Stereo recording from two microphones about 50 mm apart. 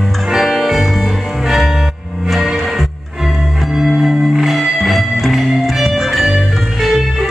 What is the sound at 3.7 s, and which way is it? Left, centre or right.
Music, centre.